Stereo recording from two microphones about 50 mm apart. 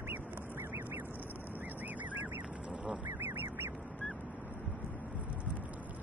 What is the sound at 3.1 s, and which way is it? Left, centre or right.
Duck, right.